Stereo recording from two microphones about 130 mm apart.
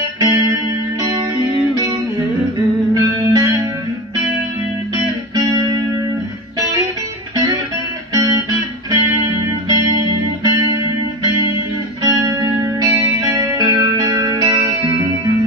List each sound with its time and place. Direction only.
0.2 s music: 30° right (ahead or behind)
2.9 s music: 30° right (ahead or behind)
5.3 s music: 30° right (ahead or behind)
8.1 s music: 25° right (ahead or behind)
12.0 s music: 30° right (ahead or behind)